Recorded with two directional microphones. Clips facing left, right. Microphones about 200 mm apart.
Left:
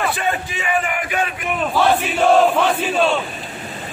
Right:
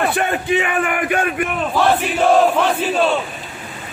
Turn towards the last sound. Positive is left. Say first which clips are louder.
# right 1 dB
turn(degrees=-5)  # may be behind; listen again after turning